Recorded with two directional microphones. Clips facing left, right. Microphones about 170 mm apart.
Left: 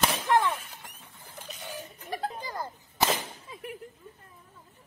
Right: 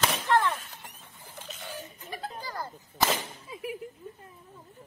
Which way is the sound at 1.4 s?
10° left (ahead or behind).